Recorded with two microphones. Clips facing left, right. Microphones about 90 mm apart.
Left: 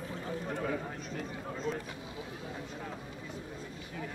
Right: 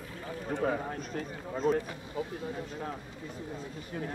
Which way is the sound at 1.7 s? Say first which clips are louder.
Right 9 dB; 45° right (ahead or behind).